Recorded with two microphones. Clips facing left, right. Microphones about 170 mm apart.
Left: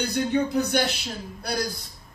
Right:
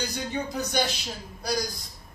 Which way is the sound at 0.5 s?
60° left (ahead or behind).